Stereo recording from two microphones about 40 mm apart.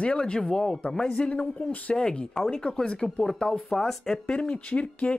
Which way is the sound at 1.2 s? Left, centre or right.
Left.